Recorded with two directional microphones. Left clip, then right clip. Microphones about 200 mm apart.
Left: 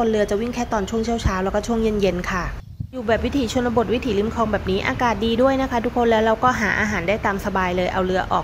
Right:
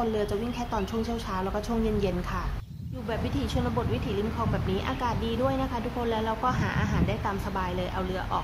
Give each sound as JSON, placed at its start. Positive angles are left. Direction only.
{"t": 0.0, "sound": "speech", "side_deg": 20}